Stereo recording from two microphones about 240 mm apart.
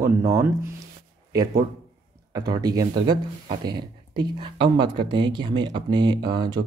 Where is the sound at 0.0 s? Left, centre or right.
Centre.